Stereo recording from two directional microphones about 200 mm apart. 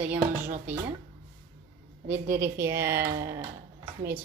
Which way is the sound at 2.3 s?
10° right (ahead or behind).